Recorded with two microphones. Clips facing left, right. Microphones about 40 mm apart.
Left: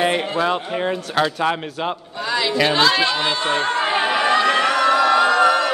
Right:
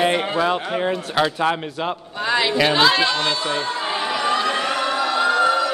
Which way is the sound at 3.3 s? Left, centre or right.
Left.